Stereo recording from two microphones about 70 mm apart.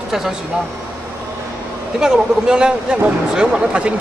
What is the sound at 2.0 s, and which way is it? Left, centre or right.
Speech, centre.